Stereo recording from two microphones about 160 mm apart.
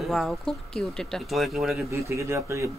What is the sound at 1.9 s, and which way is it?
Speech, 20° right (ahead or behind).